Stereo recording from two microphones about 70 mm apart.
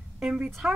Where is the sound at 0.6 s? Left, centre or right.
Centre.